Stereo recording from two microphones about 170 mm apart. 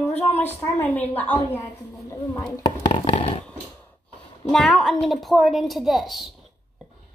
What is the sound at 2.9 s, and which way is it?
Bouncing, 35° left (ahead or behind).